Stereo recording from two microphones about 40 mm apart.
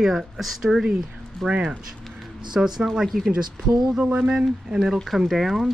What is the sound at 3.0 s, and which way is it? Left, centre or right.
Speech, centre.